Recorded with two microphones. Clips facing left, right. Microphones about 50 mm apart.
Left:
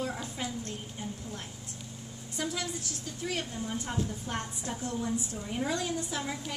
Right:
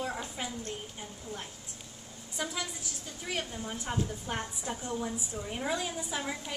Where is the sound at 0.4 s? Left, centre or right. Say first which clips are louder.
Left 4 dB; centre.